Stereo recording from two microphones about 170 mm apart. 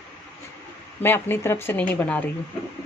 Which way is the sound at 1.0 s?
15° left (ahead or behind).